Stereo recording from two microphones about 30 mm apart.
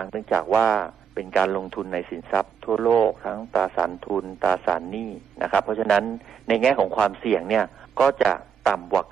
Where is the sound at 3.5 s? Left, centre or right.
Centre.